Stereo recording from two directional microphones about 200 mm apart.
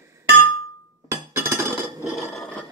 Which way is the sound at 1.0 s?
10° right (ahead or behind).